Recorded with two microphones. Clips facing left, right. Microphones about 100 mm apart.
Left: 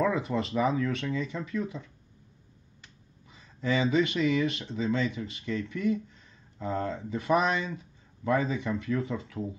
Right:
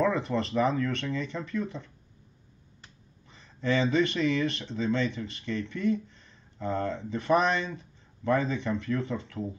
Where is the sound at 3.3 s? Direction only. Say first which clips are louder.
Right 1 dB; 10° left (ahead or behind).